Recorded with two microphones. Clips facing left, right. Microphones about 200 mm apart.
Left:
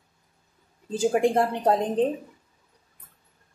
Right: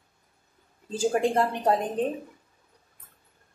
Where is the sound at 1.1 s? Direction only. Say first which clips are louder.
Left 3 dB; 20° left (ahead or behind).